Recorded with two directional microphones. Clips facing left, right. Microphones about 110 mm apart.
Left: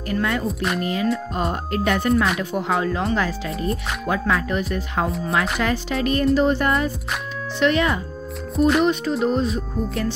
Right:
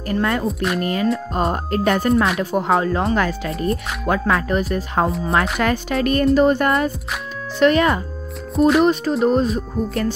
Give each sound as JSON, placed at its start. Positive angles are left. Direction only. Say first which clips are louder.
{"t": 0.1, "sound": "music", "louder": "right 3 dB", "side_deg": -35}
{"t": 0.5, "sound": "speech", "louder": "right 2 dB", "side_deg": 0}
{"t": 1.1, "sound": "music", "louder": "right 3 dB", "side_deg": -40}
{"t": 4.1, "sound": "speech", "louder": "right 4 dB", "side_deg": -55}
{"t": 4.5, "sound": "music", "louder": "right 4 dB", "side_deg": -40}
{"t": 5.6, "sound": "speech", "louder": "right 3 dB", "side_deg": -55}
{"t": 8.5, "sound": "speech", "louder": "right 3 dB", "side_deg": 0}
{"t": 9.2, "sound": "speech", "louder": "right 5 dB", "side_deg": -45}